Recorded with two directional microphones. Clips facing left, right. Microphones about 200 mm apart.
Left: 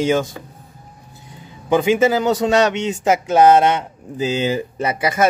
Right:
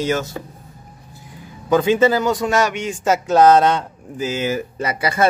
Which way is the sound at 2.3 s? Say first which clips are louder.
Left 3 dB; 25° left (ahead or behind).